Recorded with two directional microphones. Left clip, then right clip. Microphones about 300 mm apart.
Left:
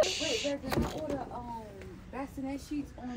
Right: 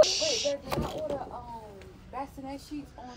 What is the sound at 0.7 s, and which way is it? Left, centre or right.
Speech, centre.